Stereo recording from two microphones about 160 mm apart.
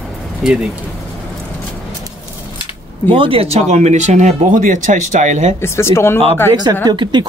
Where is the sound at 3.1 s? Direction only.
35° right (ahead or behind).